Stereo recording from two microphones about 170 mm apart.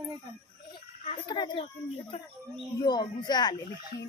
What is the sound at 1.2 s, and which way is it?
Speech, 25° left (ahead or behind).